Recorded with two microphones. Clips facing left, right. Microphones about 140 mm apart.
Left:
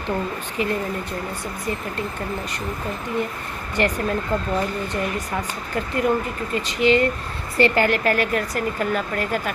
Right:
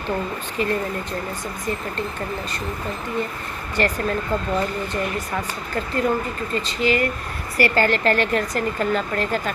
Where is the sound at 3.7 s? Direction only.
15° left (ahead or behind).